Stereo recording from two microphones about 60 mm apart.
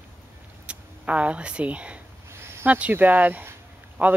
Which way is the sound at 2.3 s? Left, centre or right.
Right.